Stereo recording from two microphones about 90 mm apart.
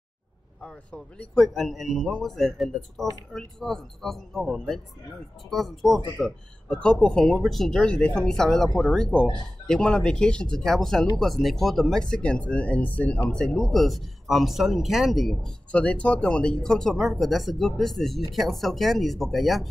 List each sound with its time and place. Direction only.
0.6 s speech: 10° left (ahead or behind)
15.7 s speech: 15° left (ahead or behind)